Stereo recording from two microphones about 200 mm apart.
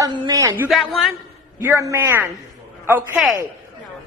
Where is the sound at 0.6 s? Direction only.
Centre (ahead or behind).